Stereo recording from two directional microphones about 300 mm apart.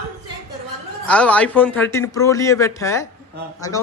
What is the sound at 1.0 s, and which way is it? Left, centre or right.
Speech, centre.